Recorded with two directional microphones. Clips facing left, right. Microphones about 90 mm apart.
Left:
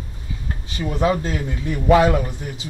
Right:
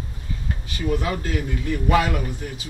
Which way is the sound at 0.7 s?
25° left (ahead or behind).